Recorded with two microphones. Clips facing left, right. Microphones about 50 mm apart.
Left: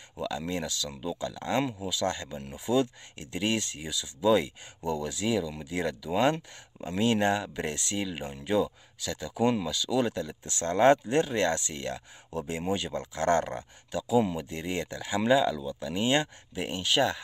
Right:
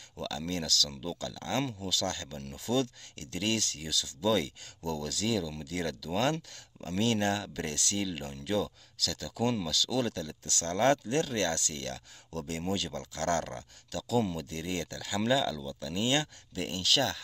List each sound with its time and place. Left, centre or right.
0.2 s speech: centre